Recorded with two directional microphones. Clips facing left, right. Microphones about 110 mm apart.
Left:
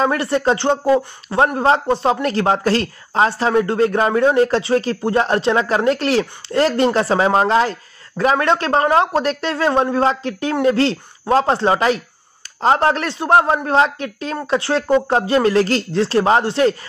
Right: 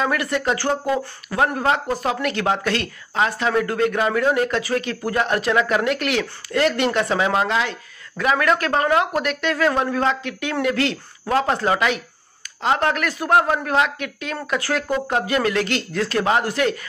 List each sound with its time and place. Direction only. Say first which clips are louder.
0.0 s speech: left 5 dB; 30° left (ahead or behind)